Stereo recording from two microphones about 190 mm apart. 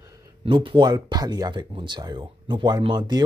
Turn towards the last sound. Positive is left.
turn(degrees=-20)  # may be behind; listen again after turning